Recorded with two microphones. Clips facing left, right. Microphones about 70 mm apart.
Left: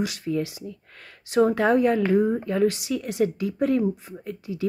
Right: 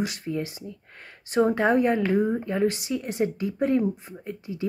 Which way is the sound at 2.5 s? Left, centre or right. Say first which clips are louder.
Left 2 dB; right.